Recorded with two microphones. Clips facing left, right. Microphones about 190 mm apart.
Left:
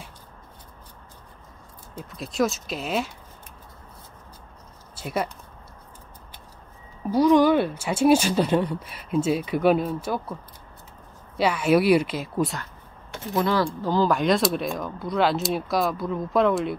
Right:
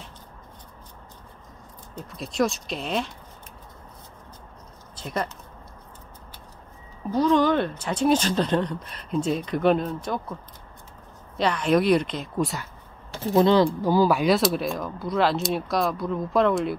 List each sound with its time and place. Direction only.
2.0 s speech: centre (ahead or behind)
4.9 s speech: 10° left (ahead or behind)
7.1 s speech: 10° left (ahead or behind)
11.3 s speech: 5° left (ahead or behind)
13.1 s speech: 30° right (ahead or behind)
13.7 s speech: 10° right (ahead or behind)